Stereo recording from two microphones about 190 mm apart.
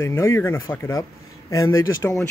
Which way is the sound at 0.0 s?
15° left (ahead or behind).